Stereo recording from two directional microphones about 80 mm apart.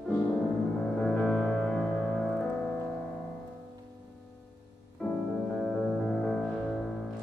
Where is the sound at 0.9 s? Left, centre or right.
Centre.